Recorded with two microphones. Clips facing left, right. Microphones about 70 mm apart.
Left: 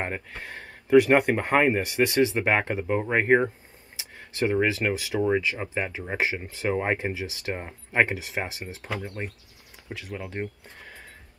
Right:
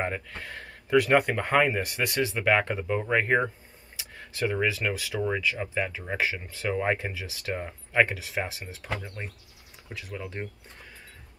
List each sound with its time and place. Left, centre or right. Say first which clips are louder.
0.4 s speech: left 1 dB; left
4.4 s speech: left 3 dB; left